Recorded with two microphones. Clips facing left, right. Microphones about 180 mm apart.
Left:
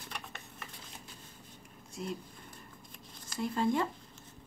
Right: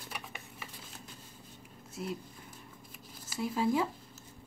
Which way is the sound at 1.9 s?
5° right (ahead or behind).